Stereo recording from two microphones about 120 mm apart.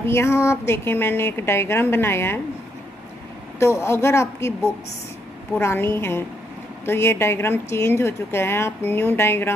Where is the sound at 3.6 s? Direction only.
20° left (ahead or behind).